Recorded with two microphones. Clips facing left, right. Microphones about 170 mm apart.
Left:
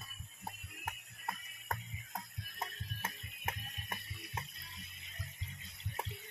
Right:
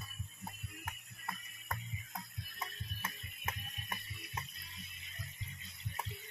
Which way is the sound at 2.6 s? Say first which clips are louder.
Left 2 dB; 55° left (ahead or behind).